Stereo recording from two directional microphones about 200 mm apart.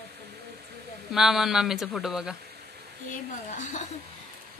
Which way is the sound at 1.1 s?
Centre (ahead or behind).